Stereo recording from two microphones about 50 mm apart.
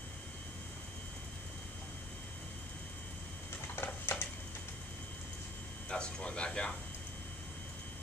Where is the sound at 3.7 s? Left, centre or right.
Left.